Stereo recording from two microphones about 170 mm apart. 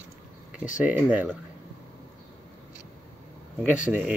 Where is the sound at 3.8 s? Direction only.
5° right (ahead or behind).